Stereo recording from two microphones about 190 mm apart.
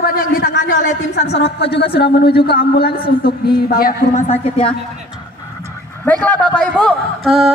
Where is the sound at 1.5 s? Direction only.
60° left (ahead or behind).